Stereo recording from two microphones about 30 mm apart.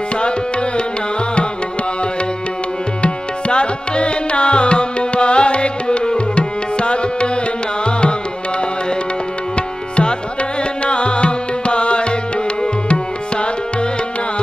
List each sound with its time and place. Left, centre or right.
0.2 s music: left
3.0 s tabla: left
10.8 s music: left
12.9 s tabla: left